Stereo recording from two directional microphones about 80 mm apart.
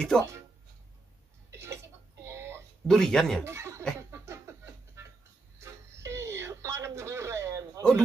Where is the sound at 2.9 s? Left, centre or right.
Centre.